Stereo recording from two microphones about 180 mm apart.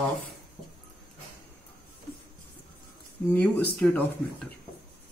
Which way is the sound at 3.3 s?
10° left (ahead or behind).